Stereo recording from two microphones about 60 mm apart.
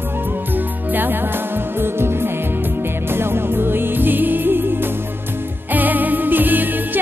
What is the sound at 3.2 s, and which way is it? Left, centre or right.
Music, right.